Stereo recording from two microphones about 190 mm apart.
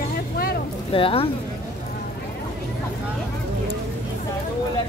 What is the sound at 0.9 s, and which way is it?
Speech, 30° left (ahead or behind).